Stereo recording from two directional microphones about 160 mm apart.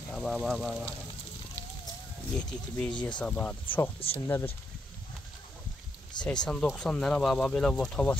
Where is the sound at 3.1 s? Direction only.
10° left (ahead or behind).